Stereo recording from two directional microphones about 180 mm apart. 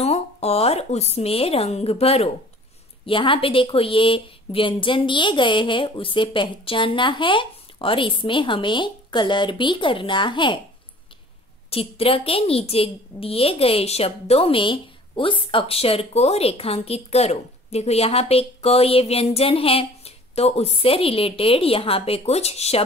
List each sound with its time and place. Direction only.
0.0 s speech: 35° left (ahead or behind)
11.7 s a woman's voice: 30° left (ahead or behind)